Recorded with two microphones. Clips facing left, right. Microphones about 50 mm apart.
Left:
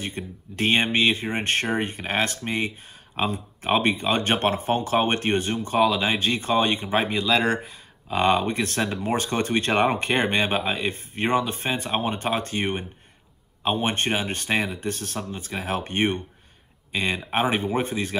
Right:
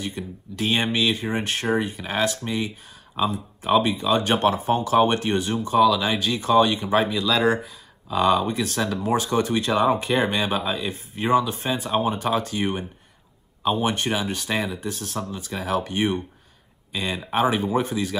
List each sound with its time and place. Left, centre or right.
0.0 s speech: left